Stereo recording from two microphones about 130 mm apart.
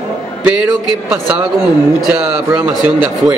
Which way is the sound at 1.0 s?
10° right (ahead or behind).